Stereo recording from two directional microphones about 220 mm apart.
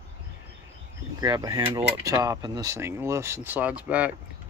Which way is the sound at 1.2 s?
15° right (ahead or behind).